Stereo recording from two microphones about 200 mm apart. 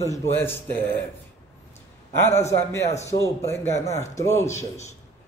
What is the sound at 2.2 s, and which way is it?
A man's voice, 15° left (ahead or behind).